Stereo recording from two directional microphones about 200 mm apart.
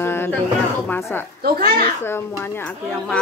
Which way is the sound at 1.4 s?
45° right (ahead or behind).